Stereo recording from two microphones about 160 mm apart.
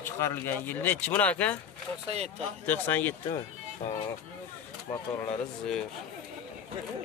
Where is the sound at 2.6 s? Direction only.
10° left (ahead or behind).